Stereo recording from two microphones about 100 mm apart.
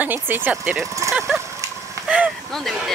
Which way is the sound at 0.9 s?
30° right (ahead or behind).